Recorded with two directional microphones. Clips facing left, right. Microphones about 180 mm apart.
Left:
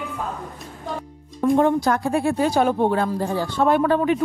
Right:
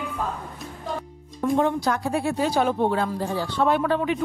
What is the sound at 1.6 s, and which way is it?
Speech, 50° left (ahead or behind).